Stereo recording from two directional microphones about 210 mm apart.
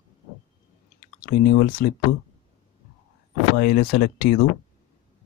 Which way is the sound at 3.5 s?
45° left (ahead or behind).